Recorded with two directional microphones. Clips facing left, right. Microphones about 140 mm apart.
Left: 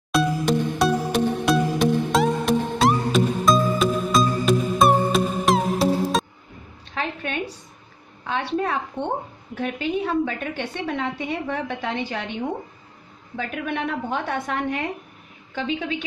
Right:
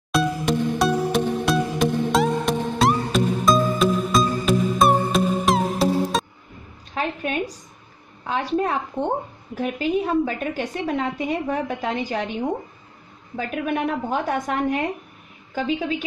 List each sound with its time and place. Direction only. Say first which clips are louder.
0.1 s music: left 1 dB; centre (ahead or behind)
6.9 s a sound: right 3 dB; 35° right (ahead or behind)
8.2 s a woman's voice: right 2 dB; 40° right (ahead or behind)
13.4 s a woman's voice: right 3 dB; 35° right (ahead or behind)